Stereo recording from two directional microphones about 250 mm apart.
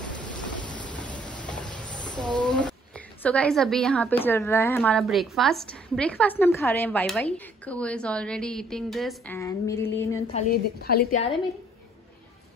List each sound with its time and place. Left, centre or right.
0.3 s train: centre
3.2 s a woman's voice: centre
10.5 s a woman's voice: left